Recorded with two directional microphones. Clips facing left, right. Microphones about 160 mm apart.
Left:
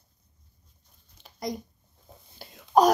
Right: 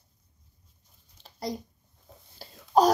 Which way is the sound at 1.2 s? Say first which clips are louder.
Left 1 dB; 30° right (ahead or behind).